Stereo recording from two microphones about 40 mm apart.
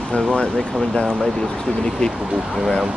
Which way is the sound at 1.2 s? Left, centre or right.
Centre.